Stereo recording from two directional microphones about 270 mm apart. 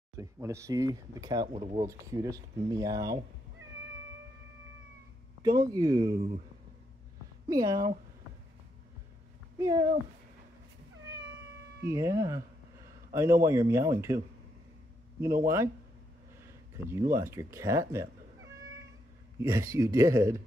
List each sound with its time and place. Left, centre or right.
0.2 s speech: centre
1.9 s speech: centre
5.4 s speech: centre
7.4 s speech: centre
9.6 s speech: centre
11.9 s speech: centre
19.4 s speech: centre